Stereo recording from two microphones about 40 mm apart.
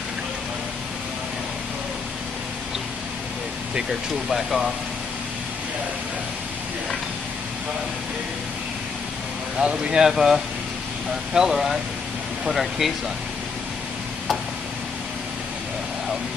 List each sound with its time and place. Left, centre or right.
4.3 s speech: centre
9.6 s speech: centre